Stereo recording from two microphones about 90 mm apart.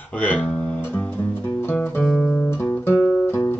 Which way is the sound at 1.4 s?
30° left (ahead or behind).